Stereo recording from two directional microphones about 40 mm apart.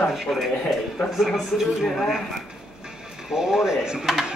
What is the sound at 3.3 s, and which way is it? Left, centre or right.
Speech, centre.